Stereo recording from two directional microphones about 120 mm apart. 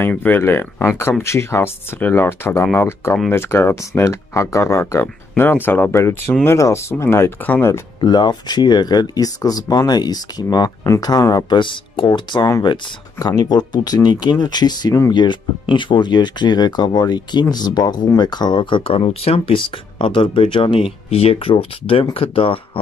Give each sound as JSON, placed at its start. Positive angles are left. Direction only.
{"t": 0.0, "sound": "speech", "side_deg": 15}
{"t": 8.0, "sound": "speech", "side_deg": 35}